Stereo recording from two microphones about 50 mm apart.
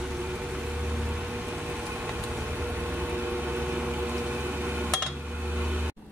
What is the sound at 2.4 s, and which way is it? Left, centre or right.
Vehicle, right.